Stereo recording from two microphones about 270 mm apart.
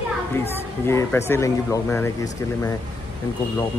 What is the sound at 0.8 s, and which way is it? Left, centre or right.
Speech, centre.